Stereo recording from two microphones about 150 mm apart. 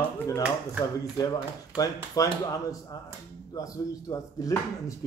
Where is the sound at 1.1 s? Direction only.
25° left (ahead or behind).